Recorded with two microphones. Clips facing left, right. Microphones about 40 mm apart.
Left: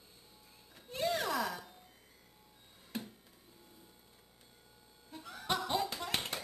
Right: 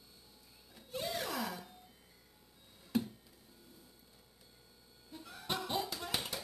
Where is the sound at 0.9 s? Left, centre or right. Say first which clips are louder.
Left 5 dB; centre.